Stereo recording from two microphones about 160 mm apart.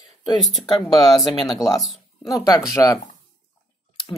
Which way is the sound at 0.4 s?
Centre (ahead or behind).